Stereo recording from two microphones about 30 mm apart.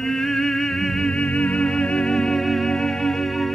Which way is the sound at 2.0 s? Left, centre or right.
Left.